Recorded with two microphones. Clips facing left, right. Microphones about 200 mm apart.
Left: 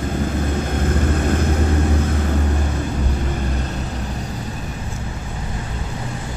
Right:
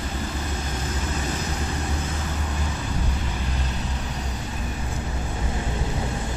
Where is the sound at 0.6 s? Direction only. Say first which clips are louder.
Left 9 dB; 55° left (ahead or behind).